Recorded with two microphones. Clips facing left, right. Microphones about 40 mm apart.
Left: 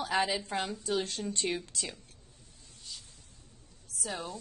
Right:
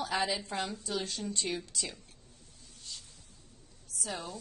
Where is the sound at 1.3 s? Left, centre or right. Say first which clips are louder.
Left 2 dB; left.